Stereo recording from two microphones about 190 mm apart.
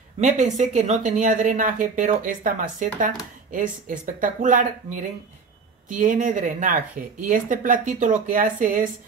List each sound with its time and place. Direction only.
0.2 s speech: 40° right (ahead or behind)